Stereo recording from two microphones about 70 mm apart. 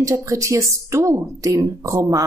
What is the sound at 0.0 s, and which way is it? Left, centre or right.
Speech, right.